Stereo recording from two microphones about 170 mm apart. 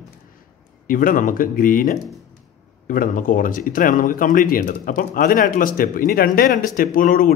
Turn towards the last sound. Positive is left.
turn(degrees=55)  # may be behind; listen again after turning